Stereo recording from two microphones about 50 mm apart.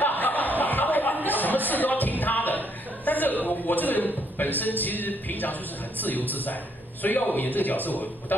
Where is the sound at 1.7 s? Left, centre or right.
Left.